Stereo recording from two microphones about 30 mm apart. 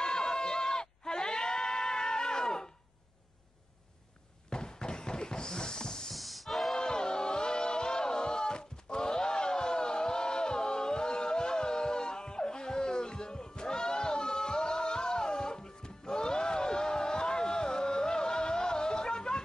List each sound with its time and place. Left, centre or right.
0.0 s goat: left
4.5 s a sound: left
6.1 s music: centre
6.7 s music: left